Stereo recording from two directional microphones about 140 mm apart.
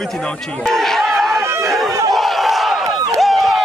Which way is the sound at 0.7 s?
Centre (ahead or behind).